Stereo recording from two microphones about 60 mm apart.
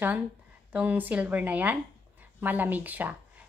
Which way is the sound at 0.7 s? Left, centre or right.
Right.